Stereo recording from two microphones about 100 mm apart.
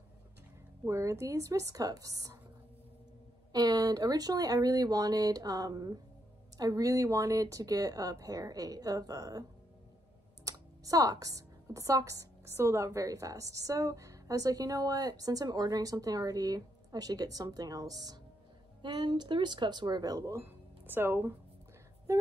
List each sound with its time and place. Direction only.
0.8 s a woman's voice: 30° right (ahead or behind)
3.5 s a woman's voice: 40° right (ahead or behind)
18.8 s speech: 50° right (ahead or behind)
20.3 s speech: 20° right (ahead or behind)